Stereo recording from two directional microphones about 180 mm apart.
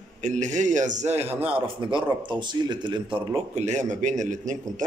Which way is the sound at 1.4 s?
30° right (ahead or behind).